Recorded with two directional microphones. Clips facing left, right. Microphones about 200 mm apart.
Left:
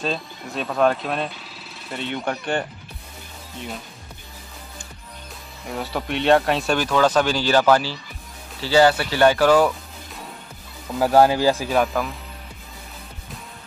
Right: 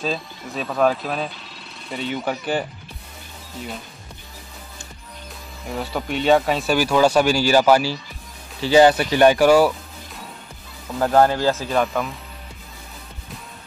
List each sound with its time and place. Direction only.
0.0 s speech: centre (ahead or behind)
5.7 s speech: centre (ahead or behind)
11.0 s speech: 10° left (ahead or behind)